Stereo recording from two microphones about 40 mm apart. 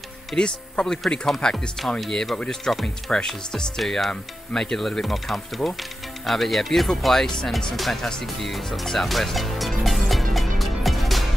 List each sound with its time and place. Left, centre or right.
0.4 s speech: left
2.7 s speech: centre
3.2 s speech: centre
3.8 s speech: centre
4.6 s speech: centre
4.8 s speech: centre
8.0 s speech: centre
8.4 s speech: centre
8.8 s music: centre